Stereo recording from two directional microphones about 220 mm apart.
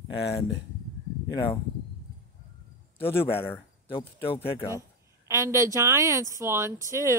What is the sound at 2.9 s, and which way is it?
A man's voice, 10° left (ahead or behind).